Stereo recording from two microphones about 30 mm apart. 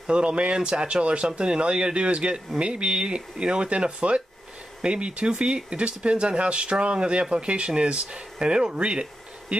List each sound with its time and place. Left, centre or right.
0.0 s speech: right